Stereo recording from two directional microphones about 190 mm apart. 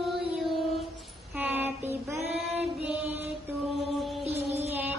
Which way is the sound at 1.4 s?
10° right (ahead or behind).